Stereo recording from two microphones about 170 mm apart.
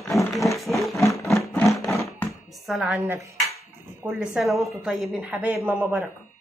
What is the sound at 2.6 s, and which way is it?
A man's voice, 5° right (ahead or behind).